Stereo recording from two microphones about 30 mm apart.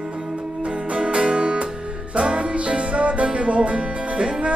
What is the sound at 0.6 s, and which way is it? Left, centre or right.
Music, right.